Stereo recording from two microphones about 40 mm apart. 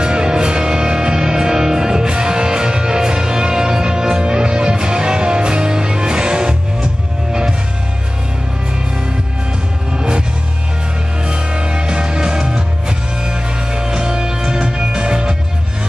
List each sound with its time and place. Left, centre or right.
0.0 s music: right
9.9 s music: right
11.2 s music: right